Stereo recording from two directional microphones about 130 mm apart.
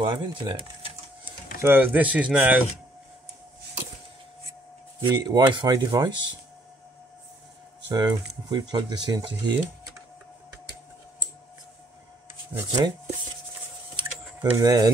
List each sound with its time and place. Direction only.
0.4 s typewriter: 40° right (ahead or behind)
1.6 s speech: 15° right (ahead or behind)
5.0 s speech: 35° right (ahead or behind)
7.9 s speech: 35° right (ahead or behind)
12.5 s speech: 30° right (ahead or behind)
13.9 s a sound: 30° right (ahead or behind)